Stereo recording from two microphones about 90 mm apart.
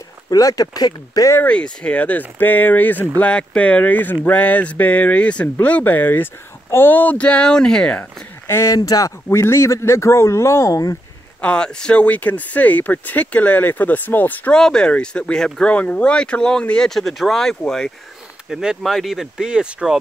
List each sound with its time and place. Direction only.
0.3 s speech: 40° left (ahead or behind)
1.3 s speech: 15° left (ahead or behind)
8.5 s speech: 30° left (ahead or behind)
8.7 s speech: 45° left (ahead or behind)
11.4 s speech: 10° left (ahead or behind)
14.6 s speech: 10° left (ahead or behind)
18.5 s speech: 5° right (ahead or behind)